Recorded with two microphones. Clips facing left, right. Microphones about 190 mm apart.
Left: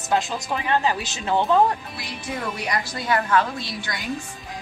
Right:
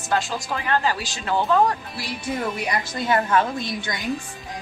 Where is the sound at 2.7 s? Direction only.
25° right (ahead or behind).